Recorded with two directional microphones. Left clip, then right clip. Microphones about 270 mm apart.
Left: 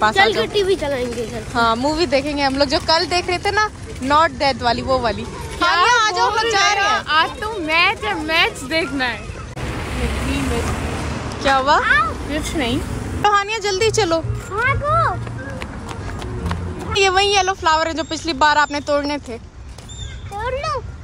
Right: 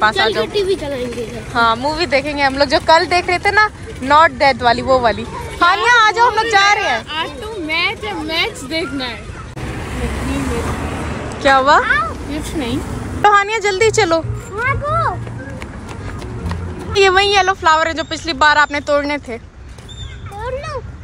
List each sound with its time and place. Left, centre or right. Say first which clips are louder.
0.1 s speech: even; centre
1.5 s speech: right 3 dB; centre
9.7 s vehicle: even; centre
10.8 s vehicle: right 2 dB; right
11.4 s speech: right 4 dB; centre
14.9 s speech: left 1 dB; centre
17.0 s speech: right 4 dB; centre
20.3 s a sound: left 2 dB; centre